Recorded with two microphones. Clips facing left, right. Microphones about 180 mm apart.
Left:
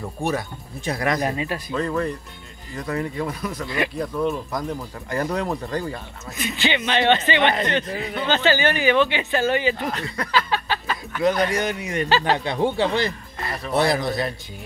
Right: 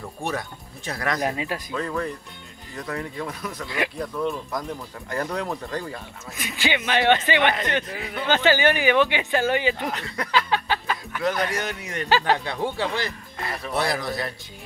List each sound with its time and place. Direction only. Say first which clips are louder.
0.0 s speech: left 4 dB; 5° left (ahead or behind)
1.2 s speech: left 2 dB; 10° right (ahead or behind)
1.7 s speech: left 6 dB; 5° left (ahead or behind)
3.6 s speech: left 2 dB; 10° right (ahead or behind)
4.0 s speech: left 3 dB; centre (ahead or behind)
6.3 s speech: left 2 dB; 10° right (ahead or behind)
7.9 s speech: left 4 dB; 25° left (ahead or behind)
8.3 s speech: right 1 dB; 15° right (ahead or behind)
10.1 s a sound: right 1 dB; 15° right (ahead or behind)
11.2 s speech: left 5 dB; 15° left (ahead or behind)